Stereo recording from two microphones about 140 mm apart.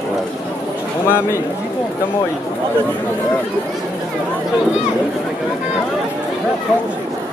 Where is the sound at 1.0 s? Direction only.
15° left (ahead or behind).